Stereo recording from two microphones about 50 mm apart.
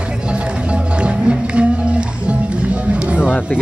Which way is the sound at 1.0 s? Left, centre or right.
Centre.